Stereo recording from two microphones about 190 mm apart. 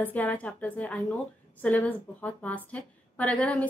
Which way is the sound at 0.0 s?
10° left (ahead or behind).